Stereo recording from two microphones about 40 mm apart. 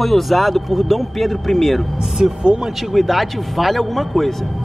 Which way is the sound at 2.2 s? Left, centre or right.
Right.